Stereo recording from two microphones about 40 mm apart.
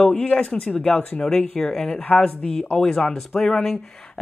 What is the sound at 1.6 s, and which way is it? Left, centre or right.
Speech, centre.